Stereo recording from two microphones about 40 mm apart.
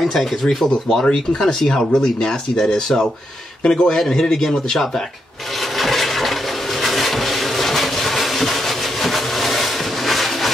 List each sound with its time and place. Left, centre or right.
0.0 s speech: centre
3.6 s a man's voice: centre
5.8 s a sound: centre